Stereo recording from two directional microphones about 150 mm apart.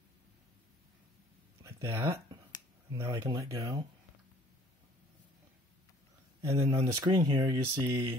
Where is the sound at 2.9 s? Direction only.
20° right (ahead or behind).